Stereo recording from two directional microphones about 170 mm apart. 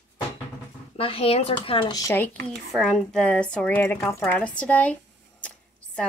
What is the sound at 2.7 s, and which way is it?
Speech, centre (ahead or behind).